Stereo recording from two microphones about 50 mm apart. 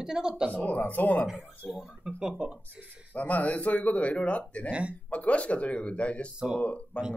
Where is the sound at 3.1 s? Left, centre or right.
Left.